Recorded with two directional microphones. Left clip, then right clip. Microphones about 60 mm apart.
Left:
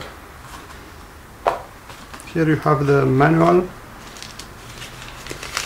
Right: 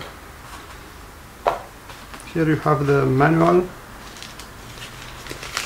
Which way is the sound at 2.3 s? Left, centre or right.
Left.